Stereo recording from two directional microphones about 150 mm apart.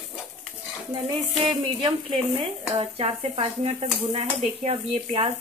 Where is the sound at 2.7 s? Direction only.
45° right (ahead or behind).